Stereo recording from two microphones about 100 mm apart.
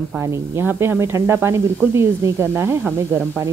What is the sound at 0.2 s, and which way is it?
Speech, 25° right (ahead or behind).